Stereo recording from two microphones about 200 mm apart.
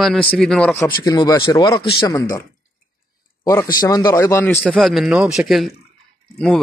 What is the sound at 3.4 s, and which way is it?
Speech, 15° left (ahead or behind).